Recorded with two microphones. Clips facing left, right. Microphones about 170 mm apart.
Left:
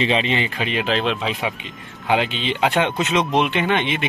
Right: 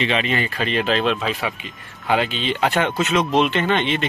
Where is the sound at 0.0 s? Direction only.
30° left (ahead or behind).